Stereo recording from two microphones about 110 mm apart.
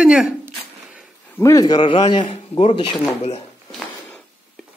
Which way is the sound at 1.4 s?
30° left (ahead or behind).